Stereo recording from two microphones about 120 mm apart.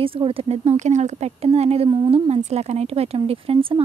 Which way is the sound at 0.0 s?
50° right (ahead or behind).